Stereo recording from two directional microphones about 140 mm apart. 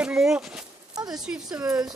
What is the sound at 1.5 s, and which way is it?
Speech, 25° right (ahead or behind).